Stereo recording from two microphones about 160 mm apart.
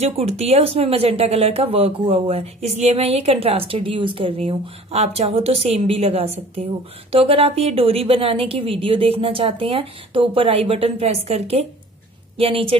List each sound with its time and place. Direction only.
0.0 s speech: 40° right (ahead or behind)